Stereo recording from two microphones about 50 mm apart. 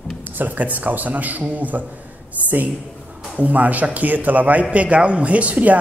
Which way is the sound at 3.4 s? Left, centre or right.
Right.